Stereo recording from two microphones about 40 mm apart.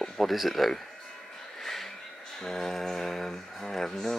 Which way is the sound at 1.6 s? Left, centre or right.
Centre.